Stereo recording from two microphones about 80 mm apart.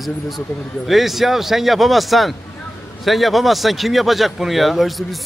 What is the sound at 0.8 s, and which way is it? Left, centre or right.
Speech, centre.